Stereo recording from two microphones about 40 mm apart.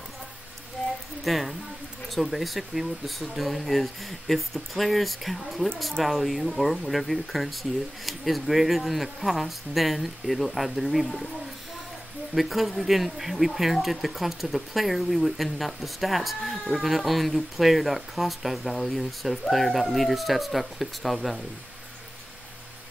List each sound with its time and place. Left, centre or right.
0.8 s a sound: centre
1.2 s speech: centre
12.4 s speech: centre